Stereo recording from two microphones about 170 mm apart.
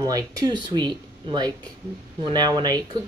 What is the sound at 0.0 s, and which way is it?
Speech, 20° right (ahead or behind).